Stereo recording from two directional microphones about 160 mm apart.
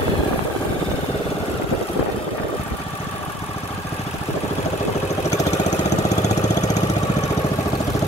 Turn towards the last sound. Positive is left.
turn(degrees=45)  # may be behind; listen again after turning